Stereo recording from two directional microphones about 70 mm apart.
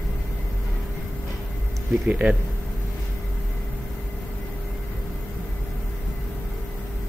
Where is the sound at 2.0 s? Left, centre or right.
Centre.